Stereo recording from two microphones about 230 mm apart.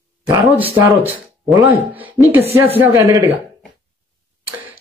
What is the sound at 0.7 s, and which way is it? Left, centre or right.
Speech, centre.